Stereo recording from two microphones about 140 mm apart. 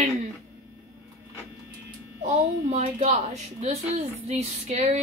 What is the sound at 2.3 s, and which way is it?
A woman's voice, 60° right (ahead or behind).